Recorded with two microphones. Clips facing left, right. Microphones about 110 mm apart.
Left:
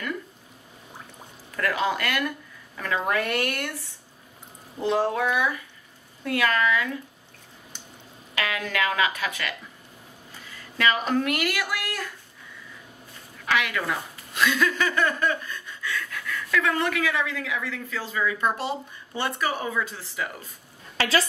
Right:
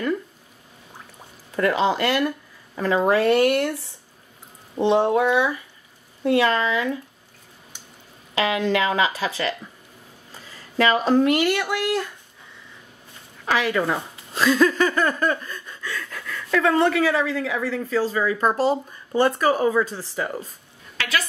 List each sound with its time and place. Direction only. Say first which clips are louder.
1.6 s speech: right 5 dB; 25° right (ahead or behind)
4.7 s speech: right 6 dB; 25° right (ahead or behind)
8.4 s speech: right 6 dB; 25° right (ahead or behind)
13.5 s speech: right 4 dB; 30° right (ahead or behind)
21.0 s a woman's voice: left 2 dB; 30° left (ahead or behind)